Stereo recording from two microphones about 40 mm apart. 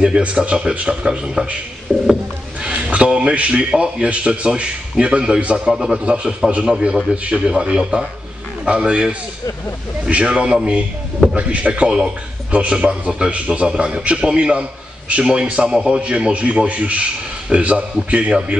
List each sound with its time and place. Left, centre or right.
0.2 s a man's voice: right
1.9 s a sound: right
3.0 s a man's voice: right
6.0 s a man's voice: right